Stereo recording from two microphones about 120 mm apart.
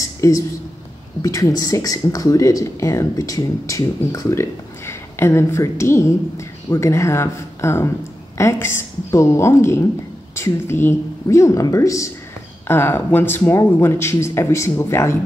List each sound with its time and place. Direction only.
0.2 s speech: 20° left (ahead or behind)